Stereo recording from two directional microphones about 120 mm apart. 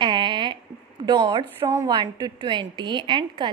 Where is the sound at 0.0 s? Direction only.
40° right (ahead or behind).